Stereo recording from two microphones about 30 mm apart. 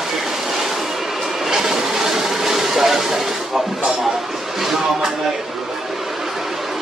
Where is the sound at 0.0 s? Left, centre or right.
Centre.